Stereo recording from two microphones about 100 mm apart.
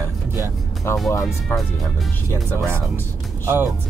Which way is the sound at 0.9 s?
25° left (ahead or behind).